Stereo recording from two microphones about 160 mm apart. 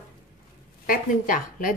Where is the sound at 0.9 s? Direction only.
60° left (ahead or behind).